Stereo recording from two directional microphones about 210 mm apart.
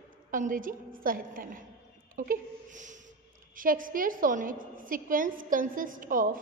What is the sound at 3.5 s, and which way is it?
A woman's voice, 40° right (ahead or behind).